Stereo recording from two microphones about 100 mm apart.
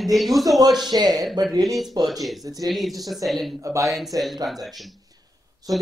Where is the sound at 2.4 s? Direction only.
35° right (ahead or behind).